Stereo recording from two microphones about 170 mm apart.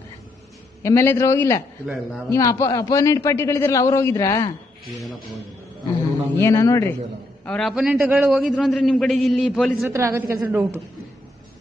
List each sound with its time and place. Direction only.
0.8 s a man's voice: 15° left (ahead or behind)
4.9 s a man's voice: centre (ahead or behind)
6.3 s a man's voice: 15° left (ahead or behind)
7.4 s a man's voice: 5° left (ahead or behind)
9.8 s a woman's voice: 15° right (ahead or behind)